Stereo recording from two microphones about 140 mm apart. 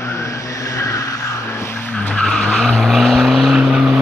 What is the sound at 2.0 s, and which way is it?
Vehicle, 10° left (ahead or behind).